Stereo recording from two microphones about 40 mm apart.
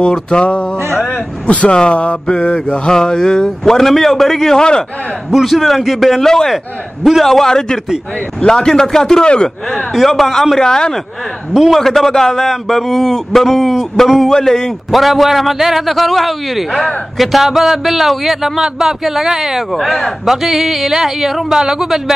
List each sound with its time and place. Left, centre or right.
0.0 s mantra: left
1.0 s a sound: left
1.7 s mantra: left
5.4 s a man's voice: centre
6.2 s a man's voice: centre
9.9 s a man's voice: centre
10.6 s a man's voice: centre
14.3 s a man's voice: centre
19.7 s a man's voice: centre
20.4 s speech: centre